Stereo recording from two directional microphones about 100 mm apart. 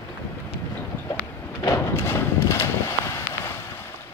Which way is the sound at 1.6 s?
30° left (ahead or behind).